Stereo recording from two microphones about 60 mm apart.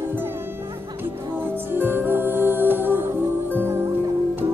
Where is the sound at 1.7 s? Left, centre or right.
Right.